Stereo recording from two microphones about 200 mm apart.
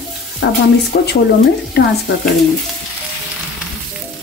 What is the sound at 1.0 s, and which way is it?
Speech, 55° left (ahead or behind).